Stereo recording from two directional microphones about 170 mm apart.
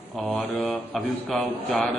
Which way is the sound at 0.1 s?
5° left (ahead or behind).